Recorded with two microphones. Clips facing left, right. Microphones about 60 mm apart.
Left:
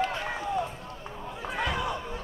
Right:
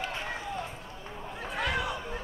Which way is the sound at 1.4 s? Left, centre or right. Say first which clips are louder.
Left 1 dB; centre.